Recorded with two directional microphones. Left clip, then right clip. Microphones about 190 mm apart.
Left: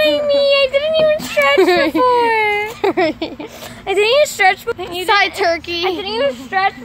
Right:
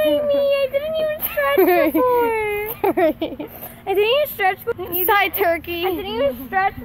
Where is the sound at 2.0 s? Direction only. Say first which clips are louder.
Left 5 dB; 15° left (ahead or behind).